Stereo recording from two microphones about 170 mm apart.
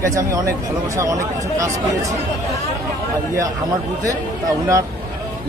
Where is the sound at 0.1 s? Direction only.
20° right (ahead or behind).